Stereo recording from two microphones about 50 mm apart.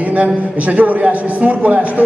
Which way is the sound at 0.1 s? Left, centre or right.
Right.